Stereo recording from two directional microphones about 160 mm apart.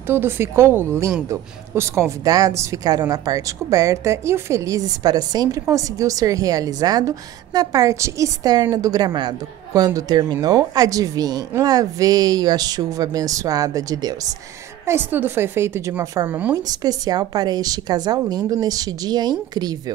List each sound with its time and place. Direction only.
0.0 s a woman's voice: 15° right (ahead or behind)
16.5 s speech: 25° right (ahead or behind)